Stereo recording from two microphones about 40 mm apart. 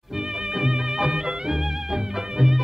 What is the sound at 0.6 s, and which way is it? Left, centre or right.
Music, centre.